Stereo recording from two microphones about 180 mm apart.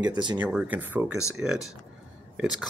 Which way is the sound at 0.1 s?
25° right (ahead or behind).